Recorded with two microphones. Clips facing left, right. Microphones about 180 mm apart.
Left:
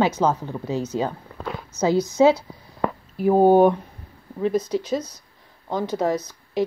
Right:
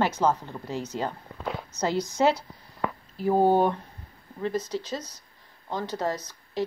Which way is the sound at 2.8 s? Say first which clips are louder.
Left 6 dB; 35° left (ahead or behind).